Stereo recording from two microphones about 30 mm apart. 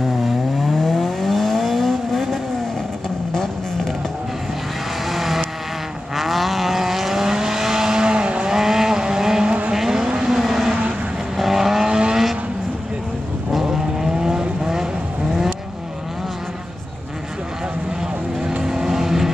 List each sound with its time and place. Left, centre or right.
0.7 s vehicle: centre
3.3 s vehicle: centre
5.1 s vehicle: centre
7.2 s vehicle: centre
8.1 s vehicle: right
8.5 s vehicle: centre
10.4 s vehicle: centre
11.9 s vehicle: right
13.7 s vehicle: centre
18.6 s vehicle: centre